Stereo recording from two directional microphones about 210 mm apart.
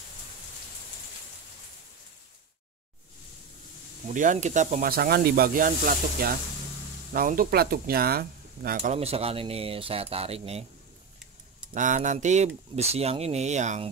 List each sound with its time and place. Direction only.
4.1 s speech: 35° right (ahead or behind)
8.9 s speech: 30° right (ahead or behind)
11.7 s speech: 35° right (ahead or behind)